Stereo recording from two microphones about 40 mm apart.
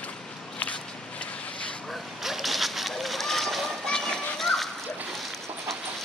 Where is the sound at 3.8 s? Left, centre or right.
Centre.